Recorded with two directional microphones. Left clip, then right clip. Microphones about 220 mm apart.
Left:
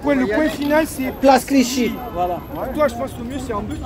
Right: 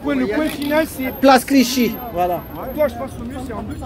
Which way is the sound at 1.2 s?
15° right (ahead or behind).